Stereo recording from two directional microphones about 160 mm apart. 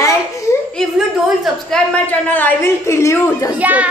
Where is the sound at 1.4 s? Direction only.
5° left (ahead or behind).